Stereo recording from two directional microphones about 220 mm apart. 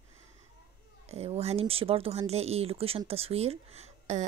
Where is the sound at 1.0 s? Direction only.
30° right (ahead or behind).